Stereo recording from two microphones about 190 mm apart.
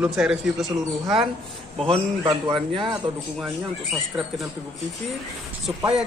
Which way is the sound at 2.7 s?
25° right (ahead or behind).